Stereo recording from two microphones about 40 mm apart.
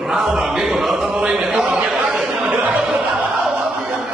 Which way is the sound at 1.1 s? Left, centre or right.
Right.